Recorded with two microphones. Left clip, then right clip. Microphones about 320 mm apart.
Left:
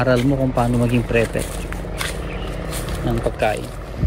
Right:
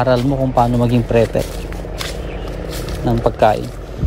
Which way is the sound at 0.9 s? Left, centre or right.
Right.